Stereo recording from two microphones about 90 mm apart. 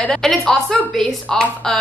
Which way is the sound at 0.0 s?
5° left (ahead or behind).